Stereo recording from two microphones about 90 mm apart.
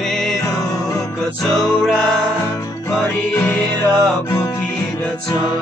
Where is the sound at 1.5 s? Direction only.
5° left (ahead or behind).